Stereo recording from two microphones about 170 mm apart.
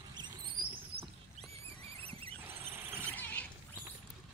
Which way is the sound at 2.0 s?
35° right (ahead or behind).